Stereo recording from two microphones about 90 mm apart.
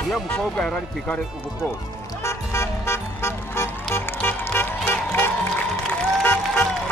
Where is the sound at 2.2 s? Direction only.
30° left (ahead or behind).